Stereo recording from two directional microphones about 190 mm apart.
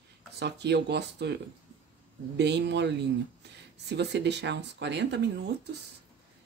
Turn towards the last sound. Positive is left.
turn(degrees=-65)  # may be behind; listen again after turning